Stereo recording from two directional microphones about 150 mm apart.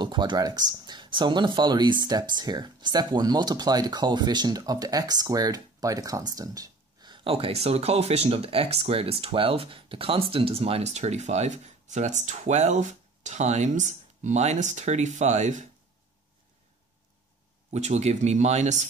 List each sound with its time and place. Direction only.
0.0 s speech: 30° right (ahead or behind); by 15.6 s 50° right (ahead or behind)
17.6 s speech: 50° right (ahead or behind)